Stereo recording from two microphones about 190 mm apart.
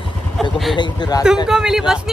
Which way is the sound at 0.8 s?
25° left (ahead or behind).